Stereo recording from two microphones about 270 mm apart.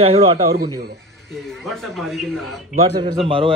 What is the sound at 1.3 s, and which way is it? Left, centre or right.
Speech, centre.